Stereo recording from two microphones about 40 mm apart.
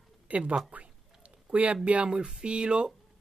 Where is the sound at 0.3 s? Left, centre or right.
Right.